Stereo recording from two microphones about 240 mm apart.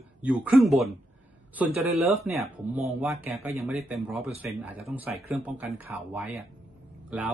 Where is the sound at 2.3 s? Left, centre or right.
Centre.